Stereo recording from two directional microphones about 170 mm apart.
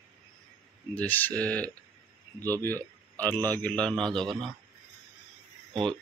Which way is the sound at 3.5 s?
10° left (ahead or behind).